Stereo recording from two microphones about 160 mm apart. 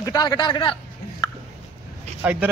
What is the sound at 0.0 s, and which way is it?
Speech, 25° left (ahead or behind).